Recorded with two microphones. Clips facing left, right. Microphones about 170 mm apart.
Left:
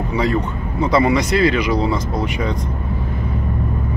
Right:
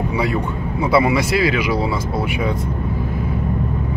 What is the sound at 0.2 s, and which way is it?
Speech, 10° right (ahead or behind).